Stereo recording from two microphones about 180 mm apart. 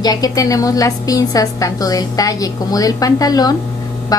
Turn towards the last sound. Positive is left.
turn(degrees=20)  # may be behind; listen again after turning